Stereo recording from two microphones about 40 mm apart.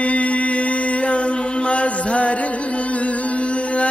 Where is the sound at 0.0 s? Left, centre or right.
Left.